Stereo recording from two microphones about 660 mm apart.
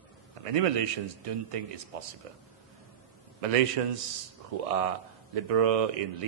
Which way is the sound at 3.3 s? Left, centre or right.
Right.